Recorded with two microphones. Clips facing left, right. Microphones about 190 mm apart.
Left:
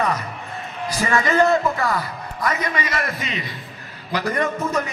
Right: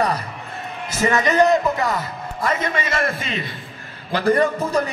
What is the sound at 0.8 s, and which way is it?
A man's voice, 20° right (ahead or behind).